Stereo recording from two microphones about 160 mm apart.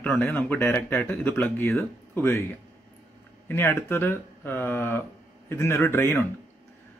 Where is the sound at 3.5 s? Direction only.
15° left (ahead or behind).